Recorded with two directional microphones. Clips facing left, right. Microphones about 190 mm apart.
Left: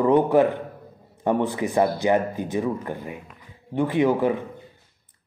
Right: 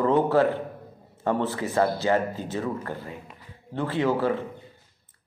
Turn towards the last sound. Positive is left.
turn(degrees=15)  # may be behind; listen again after turning